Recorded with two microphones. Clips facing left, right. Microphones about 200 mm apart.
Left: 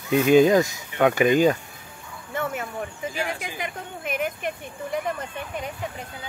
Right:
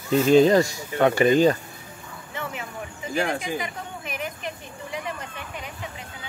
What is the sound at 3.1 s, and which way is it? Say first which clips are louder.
Speech: right 8 dB; 50° right (ahead or behind).